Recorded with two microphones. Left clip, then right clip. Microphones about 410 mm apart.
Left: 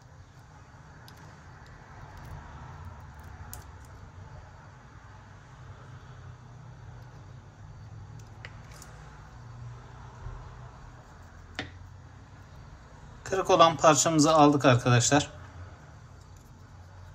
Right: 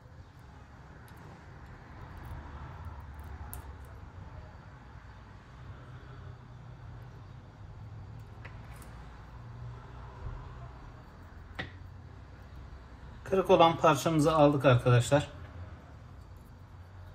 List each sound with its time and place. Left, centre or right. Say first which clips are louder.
13.2 s a man's voice: left 2 dB; centre